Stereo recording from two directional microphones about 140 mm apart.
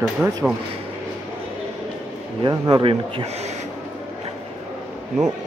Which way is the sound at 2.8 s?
40° right (ahead or behind).